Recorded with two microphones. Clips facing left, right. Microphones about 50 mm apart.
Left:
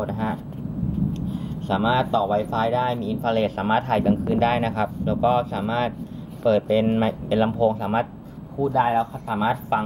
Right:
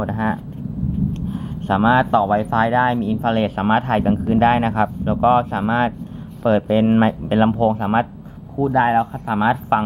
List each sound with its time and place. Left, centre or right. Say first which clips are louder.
0.1 s speech: right 5 dB; right